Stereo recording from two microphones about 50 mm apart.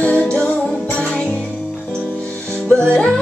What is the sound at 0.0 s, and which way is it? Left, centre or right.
Music, left.